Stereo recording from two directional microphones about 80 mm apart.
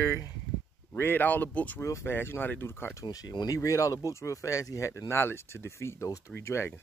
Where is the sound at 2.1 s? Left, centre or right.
Left.